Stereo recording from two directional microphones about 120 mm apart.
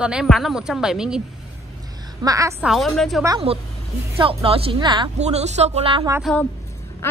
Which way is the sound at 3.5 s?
55° right (ahead or behind).